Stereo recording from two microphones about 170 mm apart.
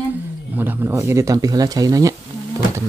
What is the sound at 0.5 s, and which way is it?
Speech, 10° right (ahead or behind).